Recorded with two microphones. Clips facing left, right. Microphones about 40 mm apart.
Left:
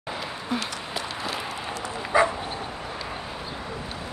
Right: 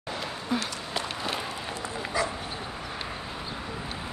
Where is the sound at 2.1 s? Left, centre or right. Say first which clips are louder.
Left 9 dB; left.